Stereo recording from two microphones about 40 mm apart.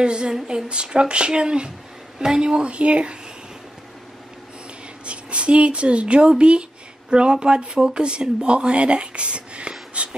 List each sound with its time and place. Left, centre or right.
0.0 s speech: right
5.0 s speech: right